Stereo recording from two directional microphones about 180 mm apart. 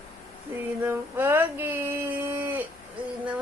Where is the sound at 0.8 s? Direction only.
10° right (ahead or behind).